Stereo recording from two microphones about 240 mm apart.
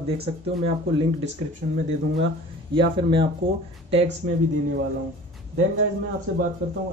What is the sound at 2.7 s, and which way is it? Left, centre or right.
Speech, right.